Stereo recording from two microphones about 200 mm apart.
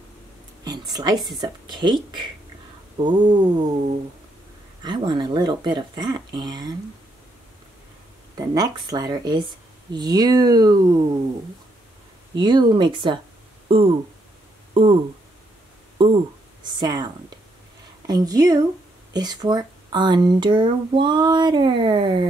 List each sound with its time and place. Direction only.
0.9 s speech: 20° right (ahead or behind)
4.8 s speech: 20° right (ahead or behind)
8.4 s speech: 20° right (ahead or behind)
12.4 s speech: 25° right (ahead or behind)
16.0 s a woman's voice: 25° right (ahead or behind)